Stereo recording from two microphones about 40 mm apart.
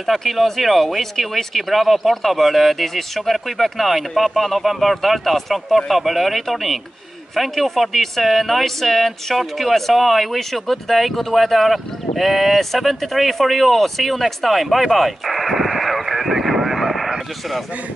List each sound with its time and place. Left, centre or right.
0.0 s speech: centre